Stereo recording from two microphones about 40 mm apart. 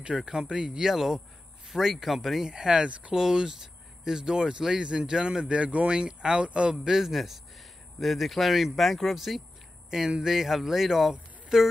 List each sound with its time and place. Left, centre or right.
0.0 s speech: centre
2.4 s speech: centre
9.8 s speech: centre